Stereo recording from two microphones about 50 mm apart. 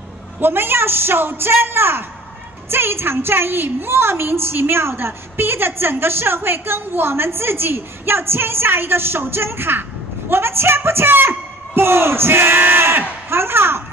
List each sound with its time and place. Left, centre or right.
0.4 s a woman's voice: right